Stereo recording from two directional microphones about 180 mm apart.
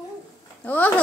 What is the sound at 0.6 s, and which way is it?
Speech, 10° left (ahead or behind).